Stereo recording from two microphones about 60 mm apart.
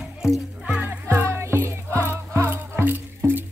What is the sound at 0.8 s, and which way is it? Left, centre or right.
Music, right.